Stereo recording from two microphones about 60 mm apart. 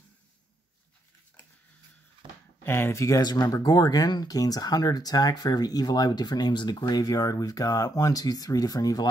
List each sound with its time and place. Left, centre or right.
2.6 s speech: left
3.0 s speech: left